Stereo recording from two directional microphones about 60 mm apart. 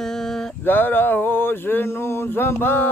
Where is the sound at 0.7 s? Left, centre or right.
Left.